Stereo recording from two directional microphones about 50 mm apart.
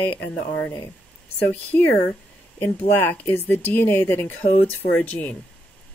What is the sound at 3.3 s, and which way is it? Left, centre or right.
Speech, left.